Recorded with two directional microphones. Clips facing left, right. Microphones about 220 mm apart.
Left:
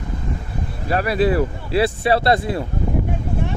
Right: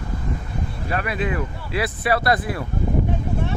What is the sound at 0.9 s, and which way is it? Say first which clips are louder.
Speech: left 7 dB; 35° left (ahead or behind).